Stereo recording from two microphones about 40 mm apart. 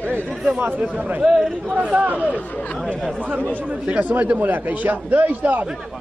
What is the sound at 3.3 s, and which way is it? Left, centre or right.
A man's voice, right.